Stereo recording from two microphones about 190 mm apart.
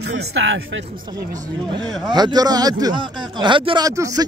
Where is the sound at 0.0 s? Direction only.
70° right (ahead or behind).